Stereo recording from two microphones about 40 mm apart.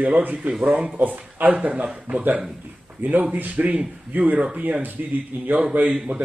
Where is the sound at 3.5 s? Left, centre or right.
Right.